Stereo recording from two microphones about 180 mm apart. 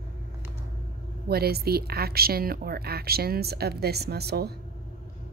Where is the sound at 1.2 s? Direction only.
60° right (ahead or behind).